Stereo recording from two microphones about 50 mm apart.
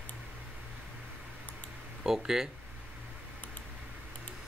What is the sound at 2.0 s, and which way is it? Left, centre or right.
Speech, centre.